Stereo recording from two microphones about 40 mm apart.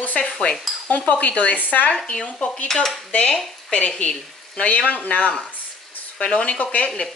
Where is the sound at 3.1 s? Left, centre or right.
Left.